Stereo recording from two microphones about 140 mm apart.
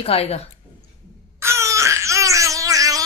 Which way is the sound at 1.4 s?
20° right (ahead or behind).